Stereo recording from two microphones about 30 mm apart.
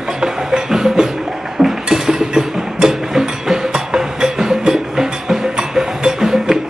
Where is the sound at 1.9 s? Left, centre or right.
Right.